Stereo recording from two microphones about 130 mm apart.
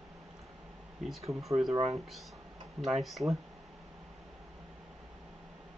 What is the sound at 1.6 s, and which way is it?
Speech, 5° right (ahead or behind).